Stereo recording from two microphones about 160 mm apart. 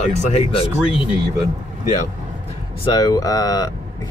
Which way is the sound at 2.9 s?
20° left (ahead or behind).